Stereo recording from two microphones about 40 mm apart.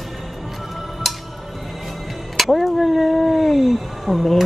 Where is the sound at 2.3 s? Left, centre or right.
Centre.